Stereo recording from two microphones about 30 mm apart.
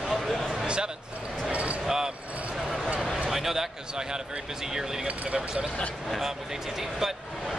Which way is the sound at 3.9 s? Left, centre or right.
Right.